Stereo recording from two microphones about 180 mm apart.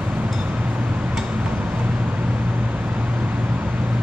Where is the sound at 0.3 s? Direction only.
5° right (ahead or behind).